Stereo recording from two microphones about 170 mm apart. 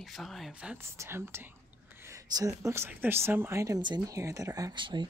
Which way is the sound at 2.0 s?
20° right (ahead or behind).